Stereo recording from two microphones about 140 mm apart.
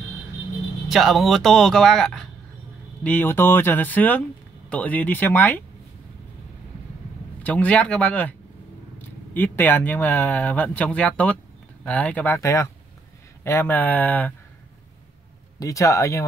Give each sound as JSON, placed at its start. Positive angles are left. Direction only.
{"t": 0.8, "sound": "speech", "side_deg": 0}
{"t": 7.4, "sound": "speech", "side_deg": 10}
{"t": 12.4, "sound": "speech", "side_deg": 20}
{"t": 15.6, "sound": "speech", "side_deg": 20}